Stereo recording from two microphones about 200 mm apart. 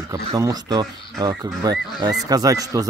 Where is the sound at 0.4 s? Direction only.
20° right (ahead or behind).